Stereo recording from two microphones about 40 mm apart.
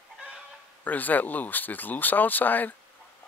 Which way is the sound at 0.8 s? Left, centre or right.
Left.